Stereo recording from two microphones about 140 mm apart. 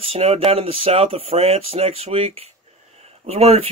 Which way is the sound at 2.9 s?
50° right (ahead or behind).